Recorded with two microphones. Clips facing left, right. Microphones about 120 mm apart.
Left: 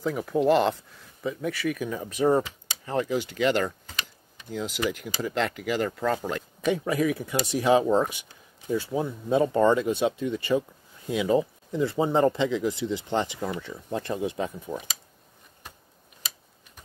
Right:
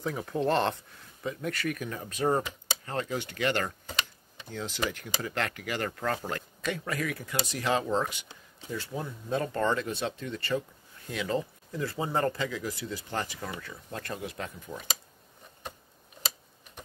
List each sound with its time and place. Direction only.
0.0 s speech: centre (ahead or behind); by 14.9 s 20° left (ahead or behind)